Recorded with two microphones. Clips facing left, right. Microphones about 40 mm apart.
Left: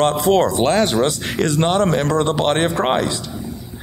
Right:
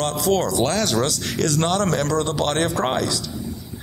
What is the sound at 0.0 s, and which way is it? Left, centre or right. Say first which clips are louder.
Speech: left 6 dB; left.